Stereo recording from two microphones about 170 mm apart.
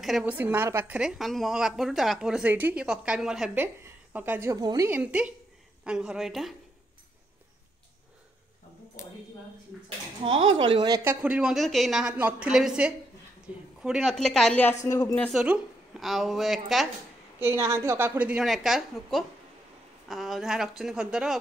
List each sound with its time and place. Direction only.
0.0 s a woman's voice: 5° right (ahead or behind); by 4.8 s 20° right (ahead or behind)
4.8 s a woman's voice: 10° right (ahead or behind)
9.7 s a sound: centre (ahead or behind)
10.2 s speech: 35° right (ahead or behind)
11.1 s a woman's voice: 5° right (ahead or behind); by 14.8 s 10° left (ahead or behind)
14.9 s speech: 20° left (ahead or behind)
15.1 s a woman's voice: centre (ahead or behind)
17.4 s a woman's voice: 15° right (ahead or behind)